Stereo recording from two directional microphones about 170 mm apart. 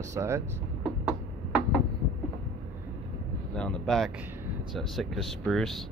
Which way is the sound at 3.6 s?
5° left (ahead or behind).